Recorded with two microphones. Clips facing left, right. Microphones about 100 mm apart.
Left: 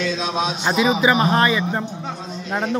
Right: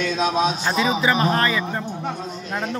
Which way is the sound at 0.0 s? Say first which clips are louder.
Right 2 dB; 50° right (ahead or behind).